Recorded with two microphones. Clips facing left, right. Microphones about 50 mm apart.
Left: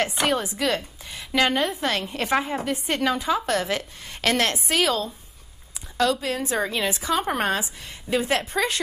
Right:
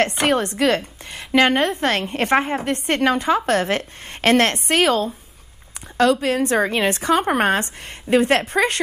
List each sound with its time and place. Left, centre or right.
0.2 s a woman's voice: right
0.6 s a woman's voice: right
6.2 s a woman's voice: right
7.6 s a woman's voice: right